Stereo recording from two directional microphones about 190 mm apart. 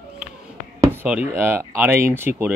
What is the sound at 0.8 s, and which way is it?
Speech, 10° right (ahead or behind).